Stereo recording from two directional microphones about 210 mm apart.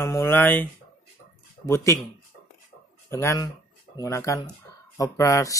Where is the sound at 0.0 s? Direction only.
10° left (ahead or behind).